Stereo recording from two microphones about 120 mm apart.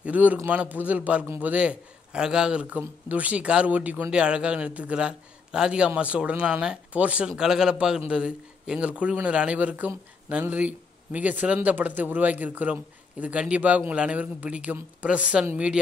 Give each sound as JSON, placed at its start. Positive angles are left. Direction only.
{"t": 0.0, "sound": "a man's voice", "side_deg": -10}
{"t": 1.2, "sound": "a man's voice", "side_deg": -20}
{"t": 1.5, "sound": "a man's voice", "side_deg": -10}